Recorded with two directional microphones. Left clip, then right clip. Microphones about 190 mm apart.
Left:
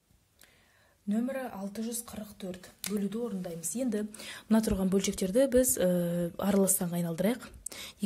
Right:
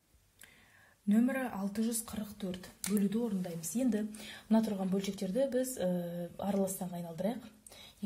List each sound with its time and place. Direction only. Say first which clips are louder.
1.0 s speech: right 1 dB; 5° left (ahead or behind); by 7.3 s 45° left (ahead or behind)